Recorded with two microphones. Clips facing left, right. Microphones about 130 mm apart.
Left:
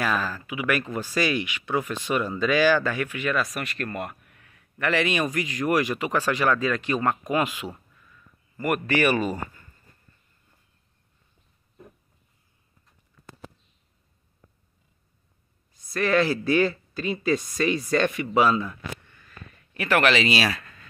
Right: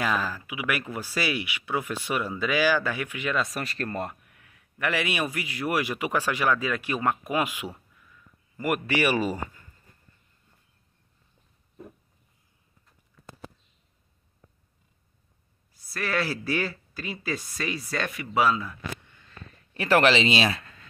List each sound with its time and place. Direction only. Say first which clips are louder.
0.0 s speech: left 1 dB; 15° right (ahead or behind); by 4.2 s 30° right (ahead or behind)
4.3 s speech: left 2 dB; 10° right (ahead or behind)
15.9 s speech: left 7 dB; 5° right (ahead or behind)
19.0 s a sound: left 1 dB; 20° right (ahead or behind)